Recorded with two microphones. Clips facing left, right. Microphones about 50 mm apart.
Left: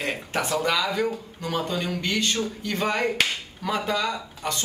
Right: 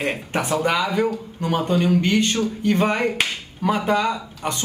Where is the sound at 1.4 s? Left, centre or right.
Right.